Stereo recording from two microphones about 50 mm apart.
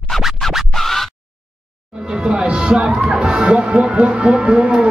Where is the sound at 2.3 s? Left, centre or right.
Centre.